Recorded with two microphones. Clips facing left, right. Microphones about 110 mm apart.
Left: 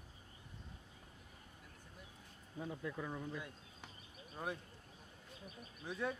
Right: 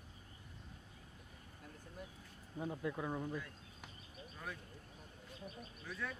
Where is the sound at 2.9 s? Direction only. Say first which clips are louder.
Right 5 dB; 20° right (ahead or behind).